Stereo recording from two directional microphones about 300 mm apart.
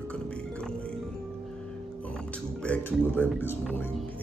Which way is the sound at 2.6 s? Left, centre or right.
Centre.